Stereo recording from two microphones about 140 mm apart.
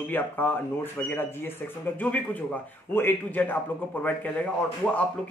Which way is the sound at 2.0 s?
10° left (ahead or behind).